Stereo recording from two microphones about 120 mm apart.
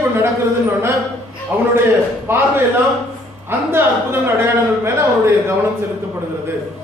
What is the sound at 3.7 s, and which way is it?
A man's voice, 20° right (ahead or behind).